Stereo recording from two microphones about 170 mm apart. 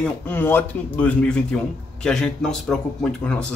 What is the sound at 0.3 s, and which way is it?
Speech, 10° left (ahead or behind).